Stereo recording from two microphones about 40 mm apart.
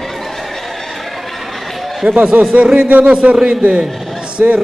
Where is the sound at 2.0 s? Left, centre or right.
Right.